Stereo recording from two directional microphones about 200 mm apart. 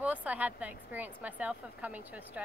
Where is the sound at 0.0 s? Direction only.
5° right (ahead or behind).